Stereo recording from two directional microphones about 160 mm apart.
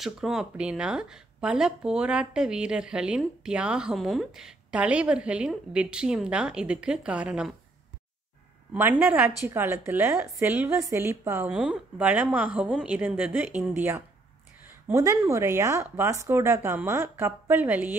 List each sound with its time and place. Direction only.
0.0 s speech: centre (ahead or behind)
8.7 s a woman's voice: 15° right (ahead or behind)